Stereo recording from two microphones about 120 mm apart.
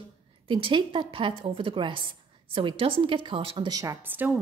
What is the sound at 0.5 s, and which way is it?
A woman's voice, 45° right (ahead or behind).